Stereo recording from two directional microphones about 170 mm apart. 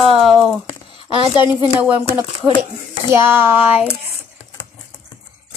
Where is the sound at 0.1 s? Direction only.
Centre (ahead or behind).